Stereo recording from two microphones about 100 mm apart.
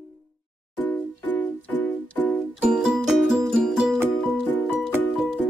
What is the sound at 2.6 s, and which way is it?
Music, 5° right (ahead or behind).